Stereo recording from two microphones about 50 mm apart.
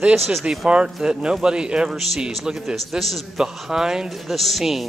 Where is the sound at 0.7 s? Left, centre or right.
Centre.